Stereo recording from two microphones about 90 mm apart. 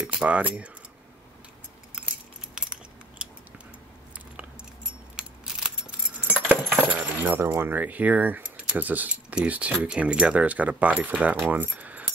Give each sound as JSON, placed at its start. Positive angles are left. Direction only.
{"t": 0.0, "sound": "speech", "side_deg": -15}
{"t": 2.6, "sound": "a sound", "side_deg": -10}
{"t": 5.1, "sound": "keys jangling", "side_deg": -10}